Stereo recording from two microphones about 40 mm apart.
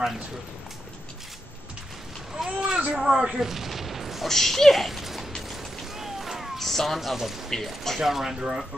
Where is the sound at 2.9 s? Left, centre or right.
Centre.